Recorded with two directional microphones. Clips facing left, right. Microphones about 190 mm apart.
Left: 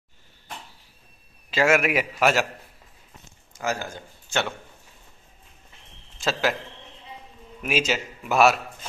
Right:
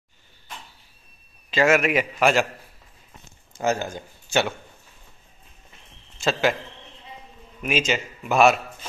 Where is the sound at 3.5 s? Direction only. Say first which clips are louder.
Right 5 dB; 25° right (ahead or behind).